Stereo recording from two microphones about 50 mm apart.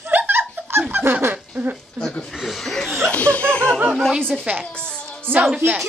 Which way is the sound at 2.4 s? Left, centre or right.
Centre.